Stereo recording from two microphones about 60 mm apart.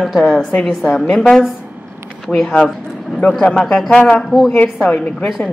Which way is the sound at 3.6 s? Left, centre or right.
Centre.